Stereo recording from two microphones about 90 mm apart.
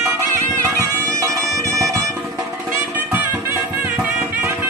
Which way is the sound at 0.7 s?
35° right (ahead or behind).